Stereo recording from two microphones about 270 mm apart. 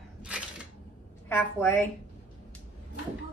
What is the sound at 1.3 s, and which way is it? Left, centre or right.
Speech, centre.